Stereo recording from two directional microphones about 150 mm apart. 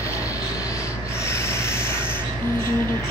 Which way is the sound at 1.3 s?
20° left (ahead or behind).